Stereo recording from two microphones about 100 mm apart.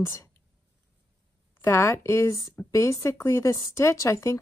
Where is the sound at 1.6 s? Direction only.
30° left (ahead or behind).